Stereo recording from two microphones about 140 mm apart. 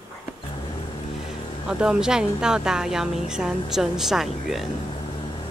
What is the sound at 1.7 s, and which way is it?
Speech, 5° right (ahead or behind).